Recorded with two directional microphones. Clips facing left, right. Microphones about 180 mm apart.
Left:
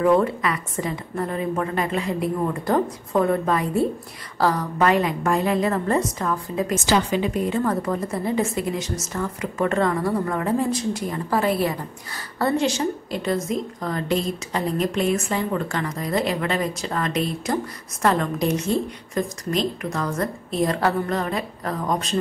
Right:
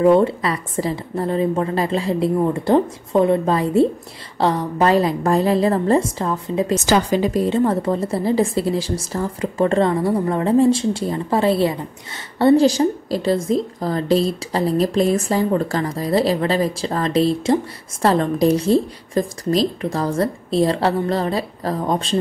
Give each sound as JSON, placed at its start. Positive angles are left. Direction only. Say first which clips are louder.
{"t": 0.0, "sound": "a woman's voice", "louder": "right 4 dB", "side_deg": -30}
{"t": 6.9, "sound": "a woman's voice", "louder": "right 3 dB", "side_deg": -40}